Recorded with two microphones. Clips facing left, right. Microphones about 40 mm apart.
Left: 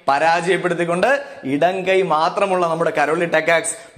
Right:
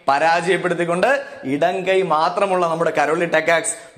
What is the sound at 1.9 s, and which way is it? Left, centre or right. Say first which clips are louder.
Speech: left 1 dB; centre.